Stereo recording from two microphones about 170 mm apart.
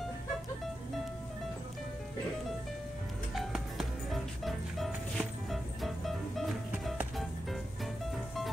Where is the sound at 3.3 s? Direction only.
Centre (ahead or behind).